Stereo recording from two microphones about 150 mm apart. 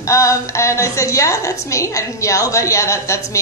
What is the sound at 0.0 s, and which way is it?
Speech, 20° left (ahead or behind).